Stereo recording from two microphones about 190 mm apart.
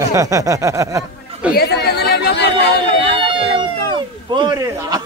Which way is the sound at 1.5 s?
60° left (ahead or behind).